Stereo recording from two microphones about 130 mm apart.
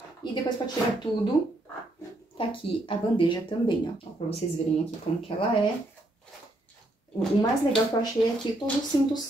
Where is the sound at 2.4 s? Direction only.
45° left (ahead or behind).